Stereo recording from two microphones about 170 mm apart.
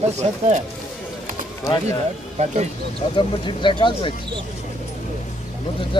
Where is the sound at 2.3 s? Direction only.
40° right (ahead or behind).